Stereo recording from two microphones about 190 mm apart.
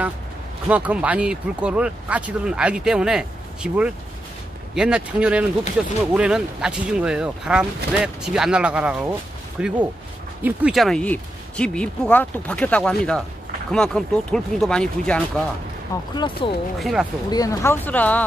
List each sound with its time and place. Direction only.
0.7 s speech: 5° right (ahead or behind)
16.2 s speech: 25° left (ahead or behind)
16.8 s speech: centre (ahead or behind)
17.3 s speech: 15° left (ahead or behind)